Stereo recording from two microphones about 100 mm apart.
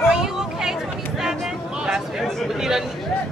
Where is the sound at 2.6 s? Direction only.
5° right (ahead or behind).